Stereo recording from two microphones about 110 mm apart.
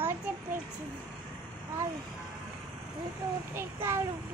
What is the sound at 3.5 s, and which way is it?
Speech, 25° right (ahead or behind).